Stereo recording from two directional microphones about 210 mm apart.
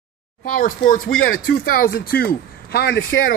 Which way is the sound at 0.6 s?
40° left (ahead or behind).